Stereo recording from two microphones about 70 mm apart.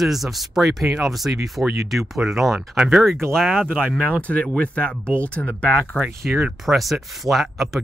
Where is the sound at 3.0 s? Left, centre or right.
Centre.